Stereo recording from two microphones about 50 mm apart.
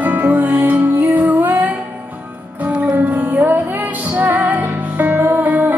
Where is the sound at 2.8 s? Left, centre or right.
Right.